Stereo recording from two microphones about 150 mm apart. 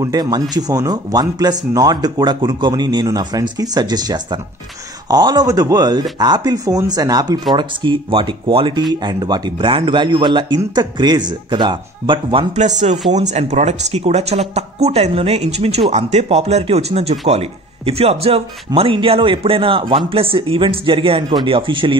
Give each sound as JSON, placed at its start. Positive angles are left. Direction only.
{"t": 0.0, "sound": "speech", "side_deg": -25}
{"t": 12.5, "sound": "speech", "side_deg": -50}